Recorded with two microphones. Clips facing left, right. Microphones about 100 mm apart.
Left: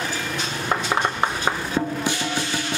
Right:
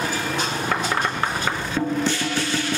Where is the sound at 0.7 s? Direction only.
20° left (ahead or behind).